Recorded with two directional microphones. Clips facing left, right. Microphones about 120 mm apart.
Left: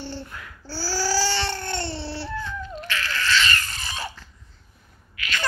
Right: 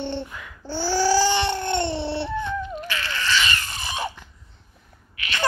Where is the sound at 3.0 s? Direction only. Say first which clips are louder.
Left 1 dB; 15° right (ahead or behind).